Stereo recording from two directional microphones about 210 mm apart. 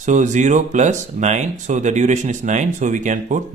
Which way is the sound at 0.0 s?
35° right (ahead or behind).